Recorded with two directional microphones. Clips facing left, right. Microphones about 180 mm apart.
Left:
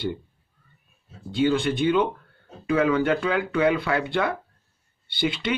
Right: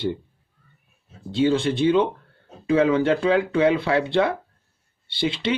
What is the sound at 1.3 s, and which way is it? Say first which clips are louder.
Speech: right 2 dB; 25° right (ahead or behind).